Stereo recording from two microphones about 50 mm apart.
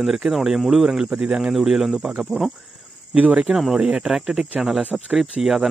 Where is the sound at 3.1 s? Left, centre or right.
Right.